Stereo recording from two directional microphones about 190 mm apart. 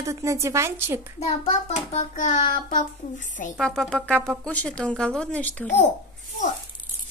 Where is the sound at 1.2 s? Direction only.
35° left (ahead or behind).